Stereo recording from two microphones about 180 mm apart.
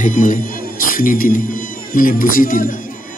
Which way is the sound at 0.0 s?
45° left (ahead or behind).